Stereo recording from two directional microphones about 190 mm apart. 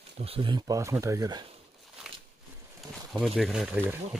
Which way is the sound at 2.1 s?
5° right (ahead or behind).